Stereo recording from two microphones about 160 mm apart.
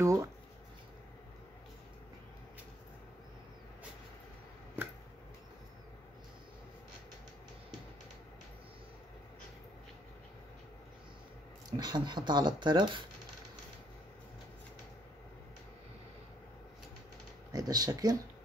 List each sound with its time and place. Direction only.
0.0 s a sound: 20° right (ahead or behind)
11.7 s speech: 25° right (ahead or behind)
17.5 s speech: 25° right (ahead or behind)